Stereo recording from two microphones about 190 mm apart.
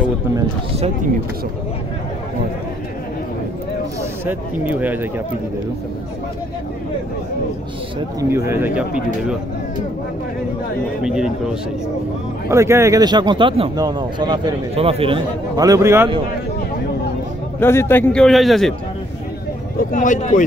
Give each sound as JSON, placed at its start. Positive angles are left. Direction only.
{"t": 0.7, "sound": "speech", "side_deg": -35}
{"t": 4.3, "sound": "speech", "side_deg": -10}
{"t": 8.5, "sound": "speech", "side_deg": -10}
{"t": 11.0, "sound": "a man's voice", "side_deg": -5}
{"t": 12.4, "sound": "a man's voice", "side_deg": -15}
{"t": 17.6, "sound": "a man's voice", "side_deg": 10}
{"t": 19.8, "sound": "speech", "side_deg": 45}